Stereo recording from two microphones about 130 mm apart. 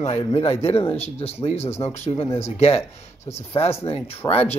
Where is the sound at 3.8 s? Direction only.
50° left (ahead or behind).